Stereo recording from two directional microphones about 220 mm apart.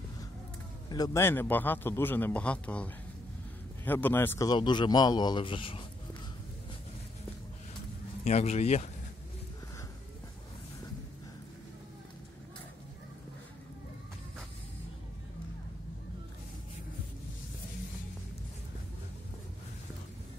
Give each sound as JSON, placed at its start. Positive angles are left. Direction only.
{"t": 0.8, "sound": "a man's voice", "side_deg": 15}
{"t": 8.2, "sound": "a man's voice", "side_deg": 30}